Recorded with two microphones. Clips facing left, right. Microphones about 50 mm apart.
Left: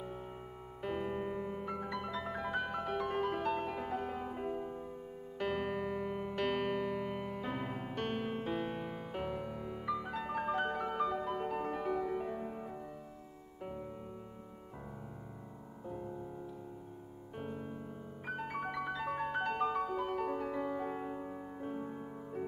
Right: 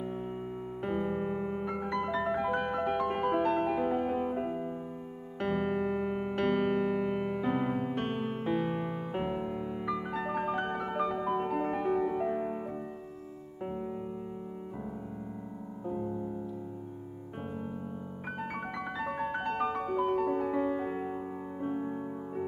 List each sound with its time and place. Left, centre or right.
0.8 s piano: centre
1.9 s music: centre
2.1 s music: right
7.9 s music: right
8.2 s music: centre
10.5 s music: centre
11.4 s music: right
15.9 s music: centre
18.4 s music: centre